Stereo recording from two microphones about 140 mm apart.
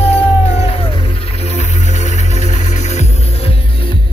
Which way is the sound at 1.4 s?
50° left (ahead or behind).